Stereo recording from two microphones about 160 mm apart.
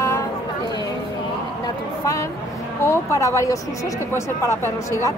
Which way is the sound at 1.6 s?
20° left (ahead or behind).